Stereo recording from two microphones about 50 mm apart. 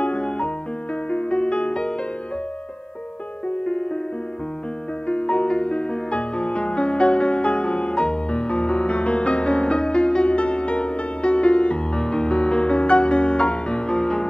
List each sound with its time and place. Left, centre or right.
0.0 s music: left
3.6 s music: centre
5.0 s music: left